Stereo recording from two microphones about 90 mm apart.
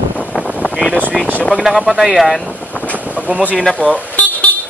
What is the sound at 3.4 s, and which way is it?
Speech, 15° left (ahead or behind).